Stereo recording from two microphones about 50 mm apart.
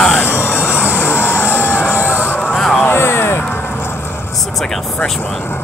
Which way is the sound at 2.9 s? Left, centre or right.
Left.